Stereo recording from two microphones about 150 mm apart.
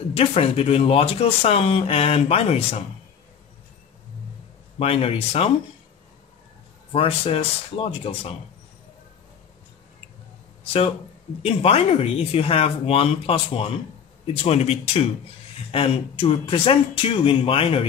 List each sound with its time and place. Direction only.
0.1 s speech: 40° left (ahead or behind)
4.7 s speech: 40° left (ahead or behind)
6.9 s speech: 40° left (ahead or behind)
11.4 s speech: 40° left (ahead or behind)